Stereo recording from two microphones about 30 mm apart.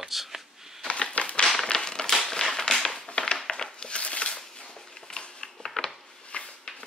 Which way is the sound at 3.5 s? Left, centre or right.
Left.